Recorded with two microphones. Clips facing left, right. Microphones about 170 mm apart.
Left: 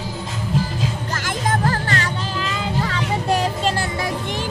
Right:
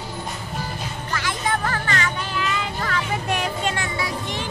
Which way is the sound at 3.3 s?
35° left (ahead or behind).